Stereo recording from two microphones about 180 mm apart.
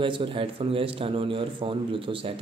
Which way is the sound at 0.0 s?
30° right (ahead or behind).